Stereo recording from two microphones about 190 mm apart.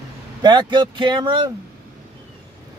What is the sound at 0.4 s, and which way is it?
Speech, 25° right (ahead or behind).